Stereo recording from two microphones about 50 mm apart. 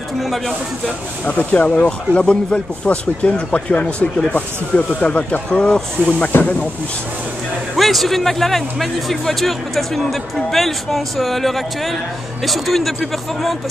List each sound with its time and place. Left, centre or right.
1.2 s speech: left
5.5 s speech: centre
7.7 s a man's voice: centre